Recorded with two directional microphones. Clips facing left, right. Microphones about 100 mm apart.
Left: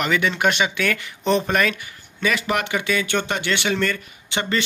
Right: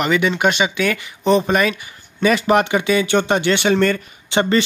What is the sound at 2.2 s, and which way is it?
Speech, 35° right (ahead or behind).